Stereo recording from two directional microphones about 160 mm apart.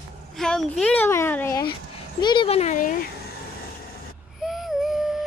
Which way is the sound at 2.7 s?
55° left (ahead or behind).